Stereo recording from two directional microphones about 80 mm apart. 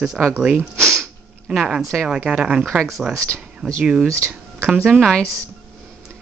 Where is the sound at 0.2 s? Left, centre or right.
Right.